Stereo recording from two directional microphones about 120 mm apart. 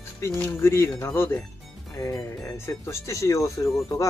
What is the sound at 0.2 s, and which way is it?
Speech, 20° left (ahead or behind).